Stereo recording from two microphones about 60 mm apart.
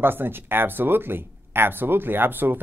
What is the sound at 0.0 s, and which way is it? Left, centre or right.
Speech, right.